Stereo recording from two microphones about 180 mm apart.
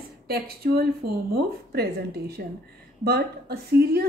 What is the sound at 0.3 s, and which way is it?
A woman's voice, 60° right (ahead or behind).